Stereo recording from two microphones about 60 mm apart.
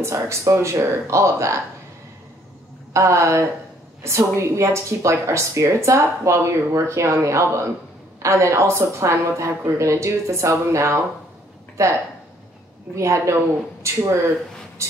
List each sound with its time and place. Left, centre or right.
0.0 s speech: right
2.9 s speech: right
14.8 s a sound: right